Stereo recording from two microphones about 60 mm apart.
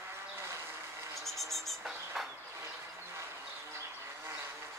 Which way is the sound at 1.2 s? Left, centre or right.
Centre.